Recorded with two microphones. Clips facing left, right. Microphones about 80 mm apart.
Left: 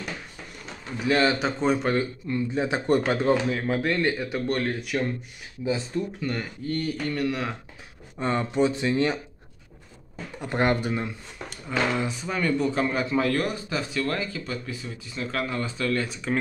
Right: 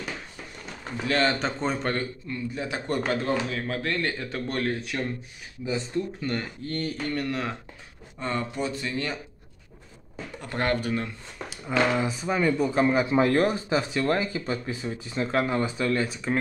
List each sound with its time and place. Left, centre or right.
0.9 s speech: centre
2.2 s speech: left; by 5.0 s centre
6.2 s speech: centre
8.2 s speech: left
10.4 s speech: centre
11.4 s speech: centre
16.0 s speech: centre